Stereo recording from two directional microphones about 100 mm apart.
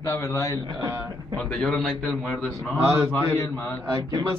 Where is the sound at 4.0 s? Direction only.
40° right (ahead or behind).